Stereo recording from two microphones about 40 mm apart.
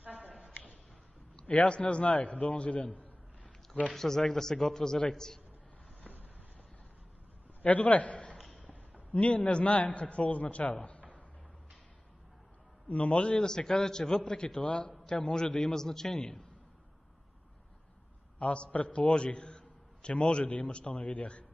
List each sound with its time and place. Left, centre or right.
1.5 s a man's voice: left
3.9 s speech: centre
7.6 s a man's voice: left
12.8 s a man's voice: left
13.4 s a man's voice: centre
18.4 s a man's voice: left